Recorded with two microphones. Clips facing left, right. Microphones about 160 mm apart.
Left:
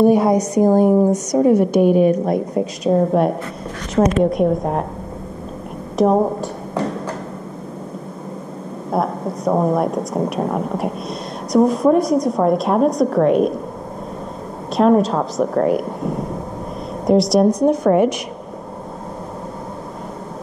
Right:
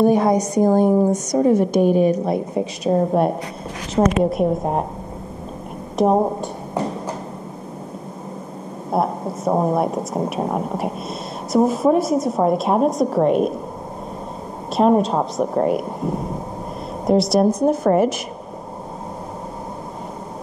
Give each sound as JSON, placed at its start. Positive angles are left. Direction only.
{"t": 0.0, "sound": "a woman's voice", "side_deg": 10}
{"t": 1.7, "sound": "a woman's voice", "side_deg": -40}
{"t": 2.2, "sound": "a woman's voice", "side_deg": -5}
{"t": 6.0, "sound": "a woman's voice", "side_deg": 0}
{"t": 8.9, "sound": "a woman's voice", "side_deg": -5}
{"t": 14.8, "sound": "a woman's voice", "side_deg": 0}
{"t": 17.0, "sound": "a woman's voice", "side_deg": 0}